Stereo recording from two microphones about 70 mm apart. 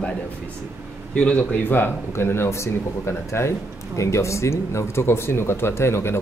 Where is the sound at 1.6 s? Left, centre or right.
Left.